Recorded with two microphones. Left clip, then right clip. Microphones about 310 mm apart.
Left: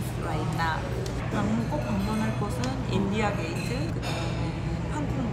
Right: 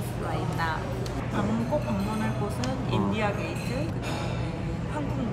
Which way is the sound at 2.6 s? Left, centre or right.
Centre.